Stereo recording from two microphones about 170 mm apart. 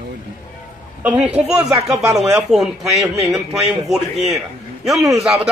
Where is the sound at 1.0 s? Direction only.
5° right (ahead or behind).